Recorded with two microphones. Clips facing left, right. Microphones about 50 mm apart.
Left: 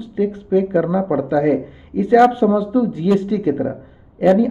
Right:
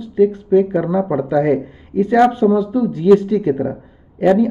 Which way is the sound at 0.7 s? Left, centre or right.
Centre.